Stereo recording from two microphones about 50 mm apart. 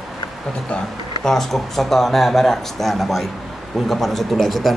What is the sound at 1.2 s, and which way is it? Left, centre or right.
Speech, centre.